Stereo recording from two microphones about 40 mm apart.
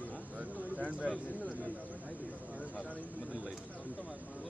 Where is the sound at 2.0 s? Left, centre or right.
Left.